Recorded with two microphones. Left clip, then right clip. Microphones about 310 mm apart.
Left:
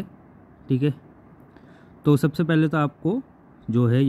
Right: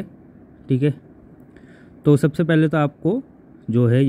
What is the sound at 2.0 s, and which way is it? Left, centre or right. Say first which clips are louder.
Speech: right 4 dB; centre.